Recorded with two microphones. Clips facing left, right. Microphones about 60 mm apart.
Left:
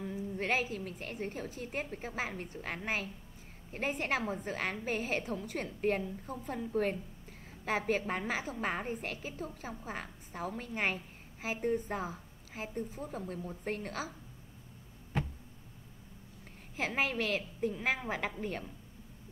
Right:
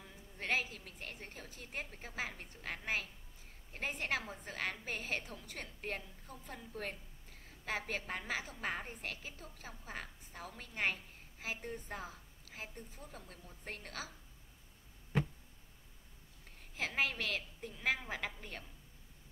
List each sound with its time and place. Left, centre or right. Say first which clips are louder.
0.0 s a woman's voice: left 10 dB; centre
16.7 s a woman's voice: left 4 dB; centre